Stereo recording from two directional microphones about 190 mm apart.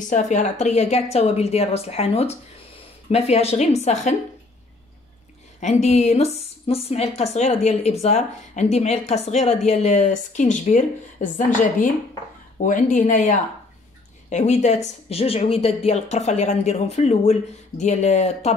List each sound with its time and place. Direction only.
0.0 s speech: 40° left (ahead or behind)
5.6 s speech: 35° left (ahead or behind)
12.6 s speech: 40° left (ahead or behind)